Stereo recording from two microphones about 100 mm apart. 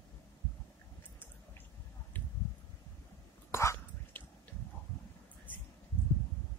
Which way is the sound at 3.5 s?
25° left (ahead or behind).